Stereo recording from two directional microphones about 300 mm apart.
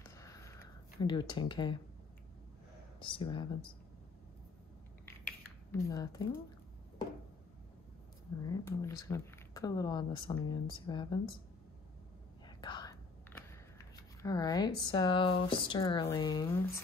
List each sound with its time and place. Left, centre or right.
0.0 s sniff: centre
1.0 s speech: centre
3.0 s speech: centre
5.7 s speech: centre
8.5 s speech: centre
12.4 s whispering: centre
14.2 s speech: centre